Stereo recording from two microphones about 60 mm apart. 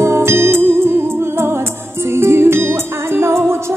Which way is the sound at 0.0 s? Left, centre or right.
Right.